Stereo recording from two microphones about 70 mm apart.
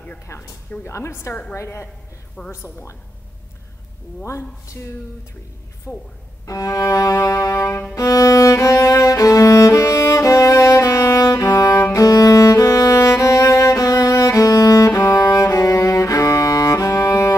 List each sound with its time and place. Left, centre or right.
0.3 s a woman's voice: left
4.3 s a woman's voice: left
5.9 s a woman's voice: centre
6.4 s cello: left
7.9 s music: left